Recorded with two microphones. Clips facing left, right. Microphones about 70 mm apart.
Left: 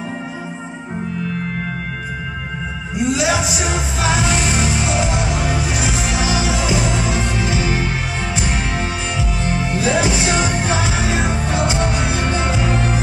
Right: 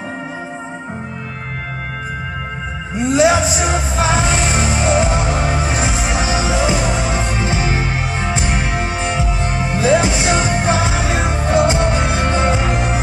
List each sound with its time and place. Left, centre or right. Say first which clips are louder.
3.0 s music: right 5 dB; right